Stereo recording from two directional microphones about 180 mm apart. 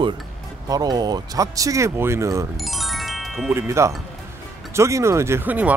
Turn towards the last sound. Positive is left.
turn(degrees=-10)  # may be behind; listen again after turning